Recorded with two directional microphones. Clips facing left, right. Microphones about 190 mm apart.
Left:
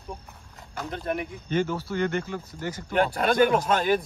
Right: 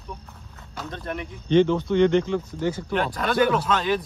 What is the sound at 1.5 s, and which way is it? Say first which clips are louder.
Speech: right 8 dB; 5° left (ahead or behind).